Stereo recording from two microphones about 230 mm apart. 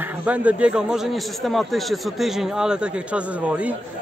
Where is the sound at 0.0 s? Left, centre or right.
Centre.